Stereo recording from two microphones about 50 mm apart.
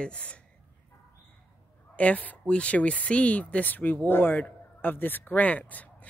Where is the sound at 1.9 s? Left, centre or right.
Left.